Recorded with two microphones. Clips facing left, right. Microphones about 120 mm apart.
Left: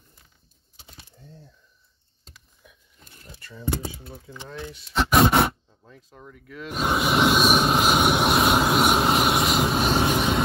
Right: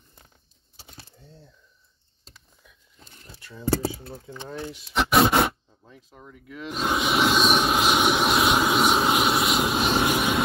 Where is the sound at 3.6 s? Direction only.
35° right (ahead or behind).